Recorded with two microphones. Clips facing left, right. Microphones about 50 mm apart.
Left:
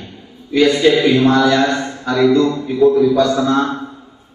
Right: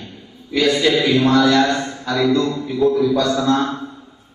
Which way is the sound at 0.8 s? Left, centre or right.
Left.